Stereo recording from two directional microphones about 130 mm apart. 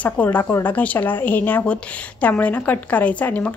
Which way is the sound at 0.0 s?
10° left (ahead or behind).